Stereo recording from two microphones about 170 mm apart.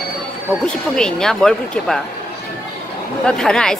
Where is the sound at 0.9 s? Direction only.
5° left (ahead or behind).